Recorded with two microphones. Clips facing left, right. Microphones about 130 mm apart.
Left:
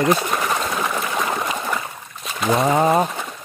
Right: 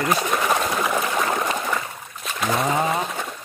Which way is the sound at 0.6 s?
Centre (ahead or behind).